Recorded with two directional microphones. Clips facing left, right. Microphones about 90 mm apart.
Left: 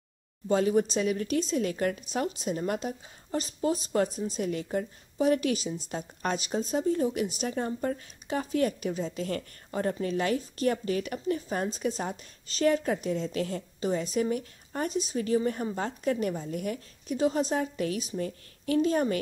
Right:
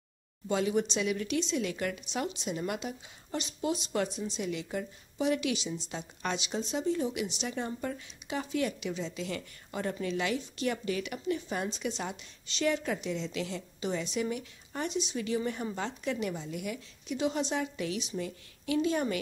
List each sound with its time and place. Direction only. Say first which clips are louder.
0.5 s a woman's voice: left 5 dB; 40° left (ahead or behind)